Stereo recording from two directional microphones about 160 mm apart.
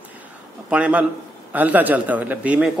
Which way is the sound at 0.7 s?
5° right (ahead or behind).